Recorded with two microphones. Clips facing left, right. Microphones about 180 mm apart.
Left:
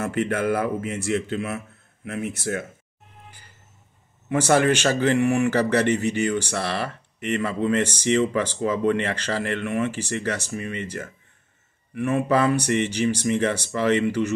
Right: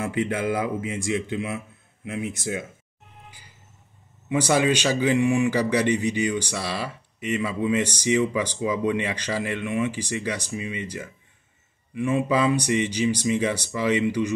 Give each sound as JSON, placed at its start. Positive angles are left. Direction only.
{"t": 0.0, "sound": "speech", "side_deg": -15}
{"t": 3.3, "sound": "vehicle", "side_deg": -10}
{"t": 4.3, "sound": "speech", "side_deg": -15}